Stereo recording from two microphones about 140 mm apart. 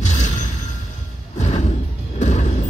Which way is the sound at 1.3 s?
55° left (ahead or behind).